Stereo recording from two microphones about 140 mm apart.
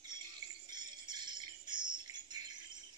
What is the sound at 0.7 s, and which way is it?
Bird, 30° right (ahead or behind).